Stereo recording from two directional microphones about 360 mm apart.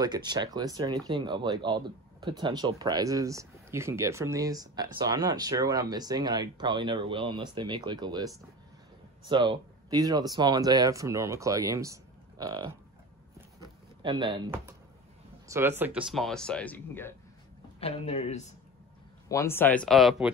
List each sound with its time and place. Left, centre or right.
0.0 s speech: centre
13.6 s a sound: centre
15.4 s speech: centre
17.7 s speech: centre